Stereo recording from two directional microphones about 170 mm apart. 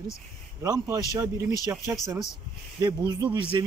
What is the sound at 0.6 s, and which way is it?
Speech, 20° right (ahead or behind).